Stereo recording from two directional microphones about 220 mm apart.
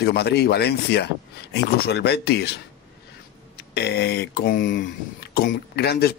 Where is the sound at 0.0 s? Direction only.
50° left (ahead or behind).